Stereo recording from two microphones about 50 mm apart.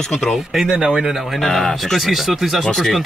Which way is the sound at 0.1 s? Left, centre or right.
Centre.